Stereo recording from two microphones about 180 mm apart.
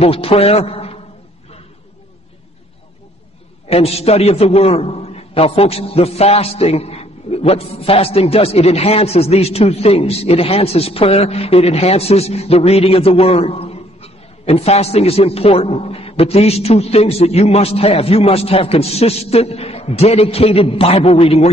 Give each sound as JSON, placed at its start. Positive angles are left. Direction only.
{"t": 0.0, "sound": "a man's voice", "side_deg": 30}
{"t": 3.6, "sound": "a man's voice", "side_deg": 35}